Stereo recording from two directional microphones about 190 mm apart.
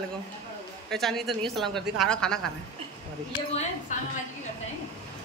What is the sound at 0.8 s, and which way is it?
A woman's voice, centre (ahead or behind).